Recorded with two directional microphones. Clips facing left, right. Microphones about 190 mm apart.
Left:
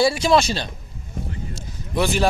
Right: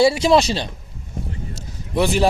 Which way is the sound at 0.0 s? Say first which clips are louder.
Right 3 dB; 25° right (ahead or behind).